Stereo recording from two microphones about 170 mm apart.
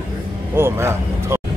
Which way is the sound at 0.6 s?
15° right (ahead or behind).